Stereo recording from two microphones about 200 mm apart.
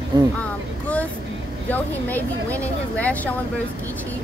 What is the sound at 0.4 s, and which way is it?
Vehicle, 5° left (ahead or behind).